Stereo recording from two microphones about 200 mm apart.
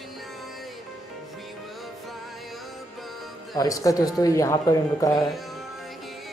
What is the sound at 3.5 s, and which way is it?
A man's voice, 15° left (ahead or behind).